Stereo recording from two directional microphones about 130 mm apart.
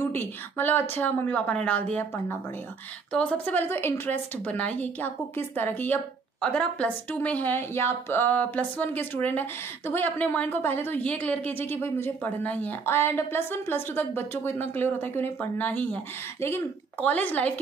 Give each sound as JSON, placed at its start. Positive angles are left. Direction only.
{"t": 0.1, "sound": "speech", "side_deg": 15}